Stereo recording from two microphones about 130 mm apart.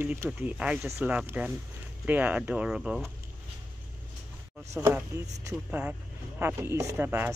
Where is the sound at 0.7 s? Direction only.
20° right (ahead or behind).